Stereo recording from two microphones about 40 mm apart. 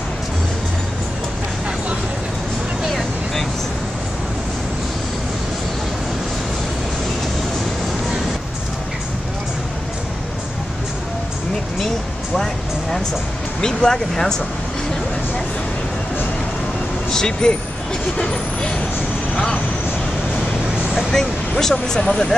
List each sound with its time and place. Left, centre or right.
2.9 s vehicle: centre
13.6 s speech: centre
17.1 s speech: centre
21.1 s speech: centre